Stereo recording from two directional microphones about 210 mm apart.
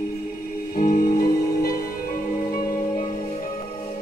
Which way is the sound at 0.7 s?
40° left (ahead or behind).